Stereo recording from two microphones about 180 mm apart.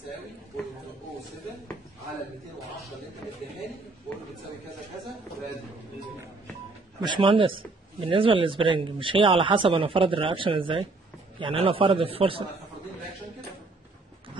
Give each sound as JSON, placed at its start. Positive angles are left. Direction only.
{"t": 7.0, "sound": "a man's voice", "side_deg": -25}